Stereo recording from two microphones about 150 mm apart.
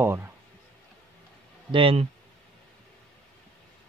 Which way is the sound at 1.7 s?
35° right (ahead or behind).